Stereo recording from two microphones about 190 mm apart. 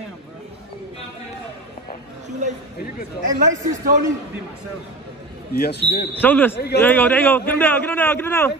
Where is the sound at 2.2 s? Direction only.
40° right (ahead or behind).